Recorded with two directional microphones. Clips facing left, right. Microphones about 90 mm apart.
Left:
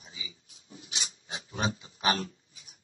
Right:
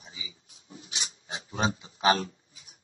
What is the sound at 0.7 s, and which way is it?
Pig, 35° right (ahead or behind).